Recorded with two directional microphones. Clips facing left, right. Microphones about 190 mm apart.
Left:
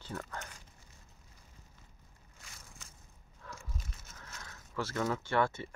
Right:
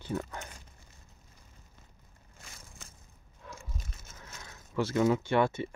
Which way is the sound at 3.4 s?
20° right (ahead or behind).